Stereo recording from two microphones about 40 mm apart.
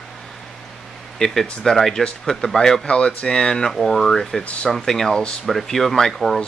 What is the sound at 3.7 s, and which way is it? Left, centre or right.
Speech, centre.